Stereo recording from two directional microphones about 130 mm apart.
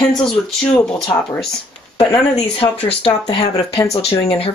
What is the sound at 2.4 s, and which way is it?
Speech, 50° left (ahead or behind).